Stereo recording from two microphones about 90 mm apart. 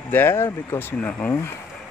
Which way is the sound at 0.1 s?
25° left (ahead or behind).